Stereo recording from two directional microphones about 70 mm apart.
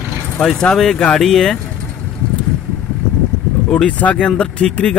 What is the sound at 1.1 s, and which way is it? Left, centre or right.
Music, centre.